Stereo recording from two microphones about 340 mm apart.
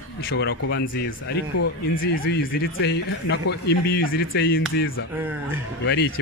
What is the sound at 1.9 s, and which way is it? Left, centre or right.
Speech, left.